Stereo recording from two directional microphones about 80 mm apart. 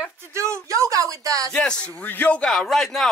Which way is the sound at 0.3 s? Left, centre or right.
Right.